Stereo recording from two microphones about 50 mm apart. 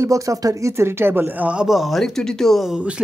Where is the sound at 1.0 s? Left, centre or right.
Right.